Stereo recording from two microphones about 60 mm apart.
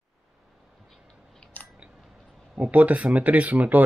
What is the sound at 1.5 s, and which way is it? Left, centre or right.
Biting, left.